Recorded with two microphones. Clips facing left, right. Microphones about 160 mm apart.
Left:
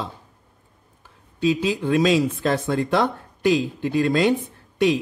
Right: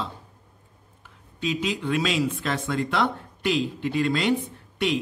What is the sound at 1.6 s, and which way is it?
A man's voice, 35° left (ahead or behind).